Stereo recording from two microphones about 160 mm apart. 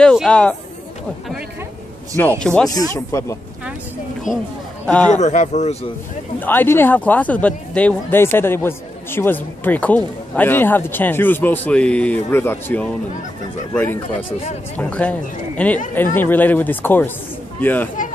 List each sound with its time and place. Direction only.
0.0 s a man's voice: 5° left (ahead or behind)
2.1 s speech: 10° left (ahead or behind)
2.7 s speech: 20° left (ahead or behind)
4.8 s a man's voice: 5° left (ahead or behind)
5.1 s speech: 45° left (ahead or behind)
6.4 s speech: 10° left (ahead or behind)